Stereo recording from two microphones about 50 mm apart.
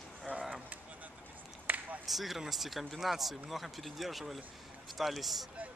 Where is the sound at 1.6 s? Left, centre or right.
Right.